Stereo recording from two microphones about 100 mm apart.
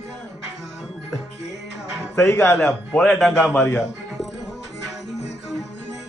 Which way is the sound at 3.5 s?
15° left (ahead or behind).